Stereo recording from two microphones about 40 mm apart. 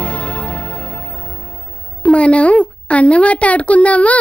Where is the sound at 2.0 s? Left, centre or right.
Left.